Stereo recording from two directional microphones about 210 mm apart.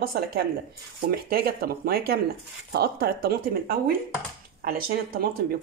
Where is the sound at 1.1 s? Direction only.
45° right (ahead or behind).